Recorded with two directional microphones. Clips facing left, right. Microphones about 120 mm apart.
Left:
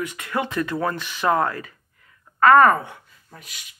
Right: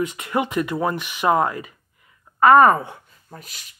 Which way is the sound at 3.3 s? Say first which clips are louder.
Right 3 dB; 40° right (ahead or behind).